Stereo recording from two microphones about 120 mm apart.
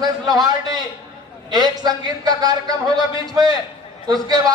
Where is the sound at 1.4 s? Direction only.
35° right (ahead or behind).